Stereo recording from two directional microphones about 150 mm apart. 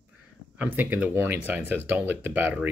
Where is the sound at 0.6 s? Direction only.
10° right (ahead or behind).